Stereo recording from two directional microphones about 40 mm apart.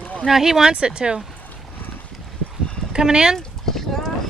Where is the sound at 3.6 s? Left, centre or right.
Centre.